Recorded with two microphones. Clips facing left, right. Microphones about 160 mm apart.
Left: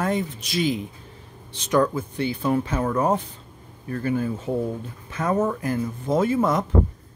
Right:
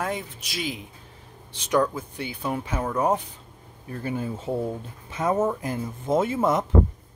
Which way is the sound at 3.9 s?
20° right (ahead or behind).